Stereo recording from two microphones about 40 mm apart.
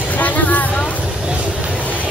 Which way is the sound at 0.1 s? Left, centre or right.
Left.